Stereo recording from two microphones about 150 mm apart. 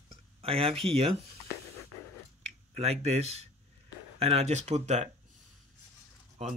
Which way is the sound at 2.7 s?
45° right (ahead or behind).